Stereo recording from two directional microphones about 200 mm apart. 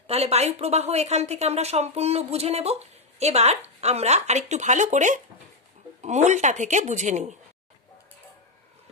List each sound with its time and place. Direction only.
0.0 s a woman's voice: 30° right (ahead or behind)